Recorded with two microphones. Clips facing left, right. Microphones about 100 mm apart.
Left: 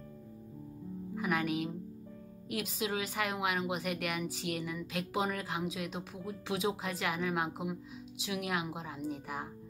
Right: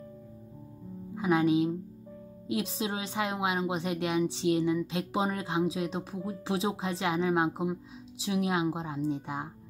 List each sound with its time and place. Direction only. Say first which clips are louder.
1.1 s a woman's voice: right 8 dB; 25° right (ahead or behind)